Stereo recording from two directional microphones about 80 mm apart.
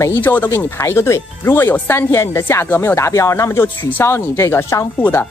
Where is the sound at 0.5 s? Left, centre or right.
Left.